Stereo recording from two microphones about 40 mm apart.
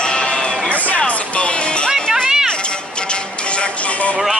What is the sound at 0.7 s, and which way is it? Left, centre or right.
Music, left.